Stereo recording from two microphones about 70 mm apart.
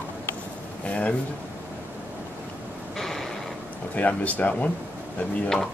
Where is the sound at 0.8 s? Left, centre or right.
Centre.